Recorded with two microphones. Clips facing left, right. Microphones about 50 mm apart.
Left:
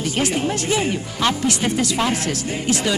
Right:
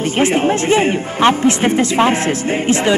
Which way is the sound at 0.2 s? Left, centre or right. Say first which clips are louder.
Right 8 dB; right.